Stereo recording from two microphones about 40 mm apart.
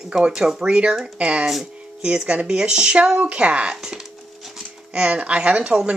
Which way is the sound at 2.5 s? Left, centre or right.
Right.